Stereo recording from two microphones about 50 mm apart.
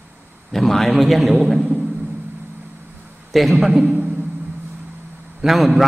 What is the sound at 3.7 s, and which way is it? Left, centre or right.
Speech, right.